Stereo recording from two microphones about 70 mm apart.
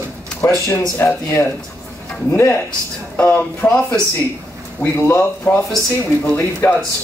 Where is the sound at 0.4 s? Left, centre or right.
Left.